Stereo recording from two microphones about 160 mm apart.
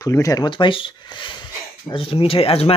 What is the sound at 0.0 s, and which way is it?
Speech, 20° left (ahead or behind).